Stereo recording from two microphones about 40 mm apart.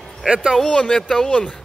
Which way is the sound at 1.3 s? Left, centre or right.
Left.